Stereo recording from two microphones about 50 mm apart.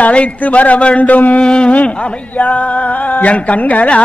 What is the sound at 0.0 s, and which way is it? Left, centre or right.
A man's voice, left.